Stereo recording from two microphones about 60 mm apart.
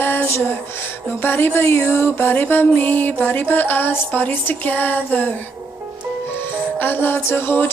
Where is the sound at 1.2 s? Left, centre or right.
Left.